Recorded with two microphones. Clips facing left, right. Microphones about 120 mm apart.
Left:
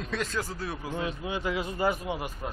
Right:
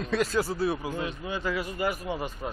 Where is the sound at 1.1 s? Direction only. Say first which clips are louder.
Even; 20° left (ahead or behind).